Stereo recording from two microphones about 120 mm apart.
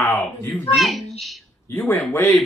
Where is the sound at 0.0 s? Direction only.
20° left (ahead or behind).